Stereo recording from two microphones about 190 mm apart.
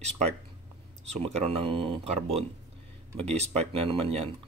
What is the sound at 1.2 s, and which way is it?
Speech, 35° right (ahead or behind).